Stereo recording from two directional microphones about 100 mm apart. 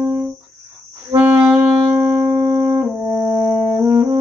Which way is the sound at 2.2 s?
30° right (ahead or behind).